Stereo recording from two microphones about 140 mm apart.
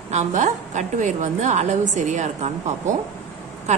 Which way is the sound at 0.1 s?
55° right (ahead or behind).